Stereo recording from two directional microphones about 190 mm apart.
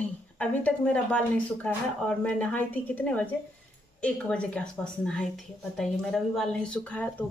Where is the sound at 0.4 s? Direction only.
5° left (ahead or behind).